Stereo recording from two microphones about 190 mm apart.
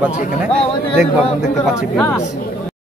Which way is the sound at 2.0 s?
10° left (ahead or behind).